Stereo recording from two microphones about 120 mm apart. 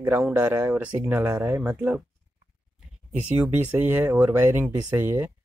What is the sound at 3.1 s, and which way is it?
Speech, 10° right (ahead or behind).